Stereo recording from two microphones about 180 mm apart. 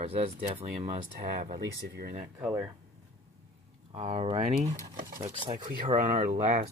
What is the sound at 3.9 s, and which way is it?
Speech, 40° right (ahead or behind).